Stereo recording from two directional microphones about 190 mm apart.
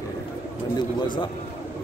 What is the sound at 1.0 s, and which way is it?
Speech, 25° left (ahead or behind).